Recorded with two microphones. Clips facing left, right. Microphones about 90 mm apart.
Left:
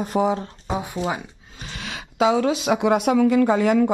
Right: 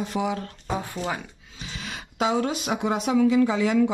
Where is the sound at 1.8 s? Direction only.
90° left.